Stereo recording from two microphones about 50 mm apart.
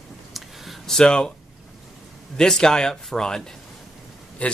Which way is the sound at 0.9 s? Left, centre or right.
Centre.